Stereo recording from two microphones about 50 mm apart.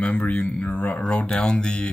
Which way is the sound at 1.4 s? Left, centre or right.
Centre.